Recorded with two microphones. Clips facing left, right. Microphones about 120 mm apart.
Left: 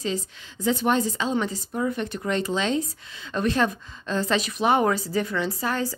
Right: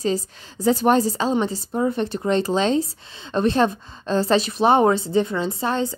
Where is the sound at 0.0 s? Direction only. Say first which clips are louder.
Right 5 dB; 40° right (ahead or behind).